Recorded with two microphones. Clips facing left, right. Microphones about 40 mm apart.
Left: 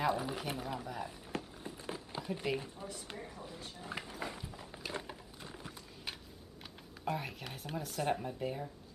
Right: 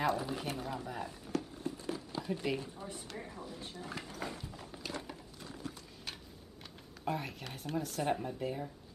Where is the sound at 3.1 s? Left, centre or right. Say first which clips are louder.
Right 1 dB; centre.